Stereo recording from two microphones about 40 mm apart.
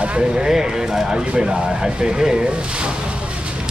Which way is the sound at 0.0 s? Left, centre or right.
Right.